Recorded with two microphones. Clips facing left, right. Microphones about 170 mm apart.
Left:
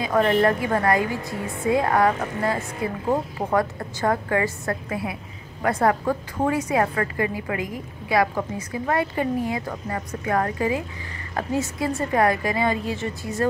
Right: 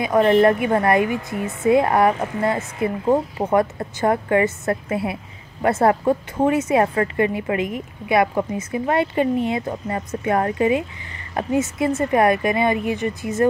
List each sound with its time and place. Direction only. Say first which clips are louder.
0.0 s a woman's voice: right 4 dB; 20° right (ahead or behind)